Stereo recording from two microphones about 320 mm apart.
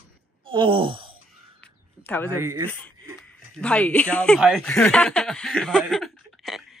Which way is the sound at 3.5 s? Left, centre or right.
Centre.